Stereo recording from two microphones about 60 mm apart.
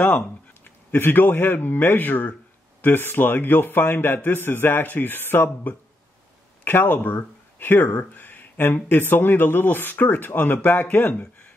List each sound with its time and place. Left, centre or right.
0.9 s speech: left